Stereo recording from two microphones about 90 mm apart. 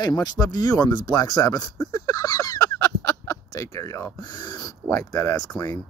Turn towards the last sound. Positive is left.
turn(degrees=45)  # may be behind; listen again after turning